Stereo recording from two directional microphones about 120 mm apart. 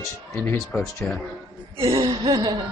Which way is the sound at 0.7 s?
20° left (ahead or behind).